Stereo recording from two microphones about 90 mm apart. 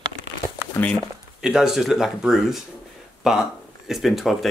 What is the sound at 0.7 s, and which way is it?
Speech, 20° left (ahead or behind).